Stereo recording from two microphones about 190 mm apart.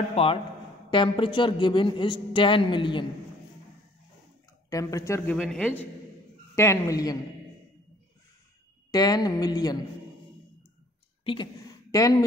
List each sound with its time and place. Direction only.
0.1 s a man's voice: 30° left (ahead or behind)
4.6 s speech: 15° left (ahead or behind)
8.9 s a man's voice: 20° left (ahead or behind)
11.9 s speech: 20° left (ahead or behind)